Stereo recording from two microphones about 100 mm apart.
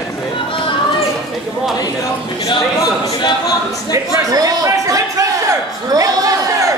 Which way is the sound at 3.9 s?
35° right (ahead or behind).